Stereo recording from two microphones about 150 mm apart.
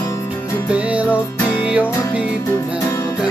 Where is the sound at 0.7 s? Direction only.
10° right (ahead or behind).